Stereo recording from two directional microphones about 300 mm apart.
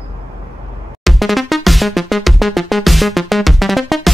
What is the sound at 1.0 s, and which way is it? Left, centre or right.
Music, centre.